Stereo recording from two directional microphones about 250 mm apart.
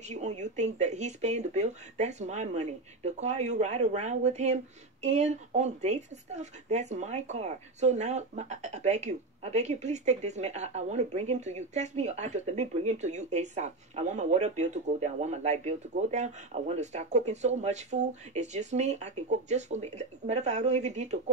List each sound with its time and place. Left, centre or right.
0.1 s speech: right